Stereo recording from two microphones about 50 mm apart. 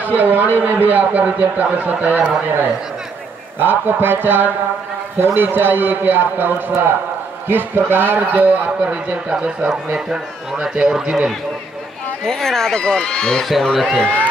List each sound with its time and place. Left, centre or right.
0.0 s speech: right
3.5 s a man's voice: right
8.2 s speech: right
10.0 s a man's voice: centre
12.3 s speech: centre
13.4 s a man's voice: centre
13.9 s speech: left